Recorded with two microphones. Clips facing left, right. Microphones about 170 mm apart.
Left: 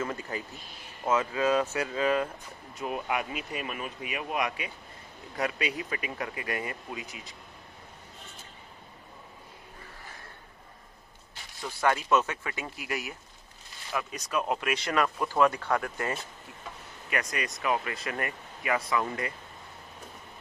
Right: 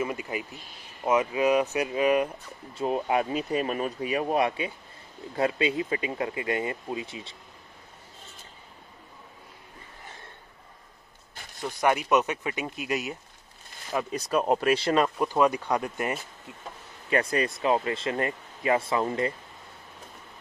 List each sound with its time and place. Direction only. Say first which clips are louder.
0.0 s speech: right 3 dB; 15° right (ahead or behind)
2.8 s speech: right 6 dB; 30° right (ahead or behind)
11.6 s speech: right 3 dB; 15° right (ahead or behind)
13.9 s speech: right 5 dB; 35° right (ahead or behind)
17.1 s speech: right 7 dB; 30° right (ahead or behind)